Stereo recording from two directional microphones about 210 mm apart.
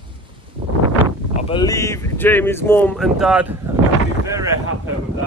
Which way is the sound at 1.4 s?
25° left (ahead or behind).